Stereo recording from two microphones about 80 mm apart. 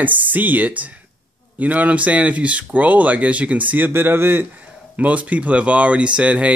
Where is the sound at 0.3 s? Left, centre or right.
Right.